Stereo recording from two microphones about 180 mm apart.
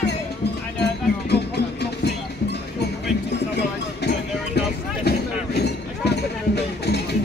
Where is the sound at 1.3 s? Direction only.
65° left (ahead or behind).